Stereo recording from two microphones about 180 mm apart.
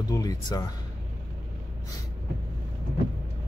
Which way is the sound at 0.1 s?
20° left (ahead or behind).